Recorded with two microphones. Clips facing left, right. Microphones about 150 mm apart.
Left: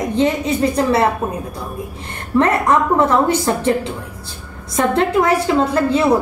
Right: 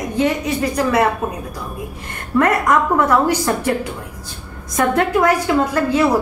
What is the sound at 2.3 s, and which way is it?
A woman's voice, 25° left (ahead or behind).